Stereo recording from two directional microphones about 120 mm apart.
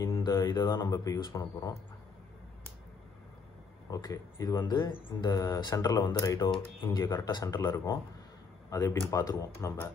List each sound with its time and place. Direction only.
0.0 s speech: 35° left (ahead or behind)
3.9 s speech: 30° left (ahead or behind)
6.4 s speech: 40° left (ahead or behind)
8.6 s a sound: 25° left (ahead or behind)
9.1 s speech: 30° left (ahead or behind)